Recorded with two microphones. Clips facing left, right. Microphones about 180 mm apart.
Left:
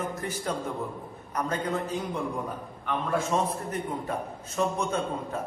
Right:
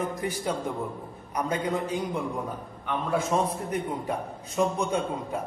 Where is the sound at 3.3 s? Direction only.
10° right (ahead or behind).